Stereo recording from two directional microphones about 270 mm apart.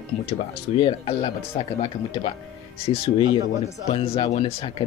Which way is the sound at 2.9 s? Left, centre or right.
Centre.